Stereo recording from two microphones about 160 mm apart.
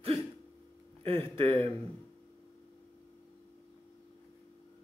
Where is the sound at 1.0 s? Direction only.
35° right (ahead or behind).